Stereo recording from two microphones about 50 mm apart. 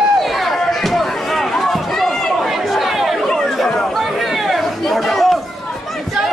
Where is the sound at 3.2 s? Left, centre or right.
Centre.